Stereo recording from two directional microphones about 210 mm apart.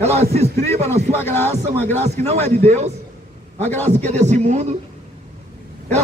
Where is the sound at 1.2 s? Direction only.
10° left (ahead or behind).